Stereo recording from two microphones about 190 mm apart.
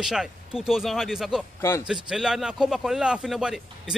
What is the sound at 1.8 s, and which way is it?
Speech, 5° right (ahead or behind).